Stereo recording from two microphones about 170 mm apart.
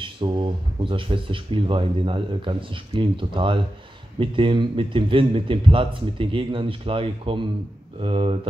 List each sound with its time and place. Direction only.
0.0 s speech: 25° right (ahead or behind)